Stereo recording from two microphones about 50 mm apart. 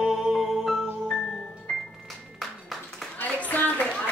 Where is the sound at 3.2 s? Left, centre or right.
Left.